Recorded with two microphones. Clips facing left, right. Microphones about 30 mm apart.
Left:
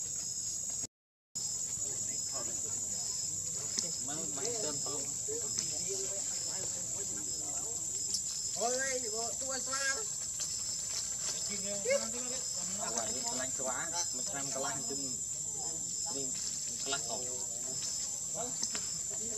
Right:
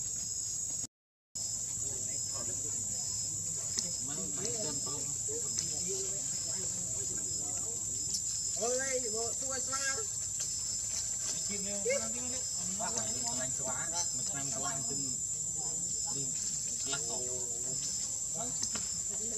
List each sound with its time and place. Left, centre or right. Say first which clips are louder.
1.9 s cricket: even; centre
5.6 s snake: right 1 dB; centre
6.1 s a sound: even; centre
8.5 s speech: even; centre
9.5 s speech: left 4 dB; left
11.2 s a sound: even; left
11.9 s speech: left 2 dB; left
12.2 s speech: even; centre
16.8 s speech: left 2 dB; centre